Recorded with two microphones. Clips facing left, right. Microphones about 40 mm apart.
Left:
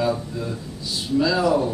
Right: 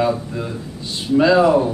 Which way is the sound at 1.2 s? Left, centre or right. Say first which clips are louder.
Right 7 dB; right.